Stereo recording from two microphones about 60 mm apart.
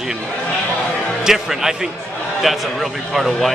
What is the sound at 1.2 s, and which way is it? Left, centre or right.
Speech, centre.